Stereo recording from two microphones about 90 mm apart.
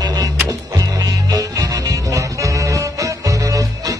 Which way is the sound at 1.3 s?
40° right (ahead or behind).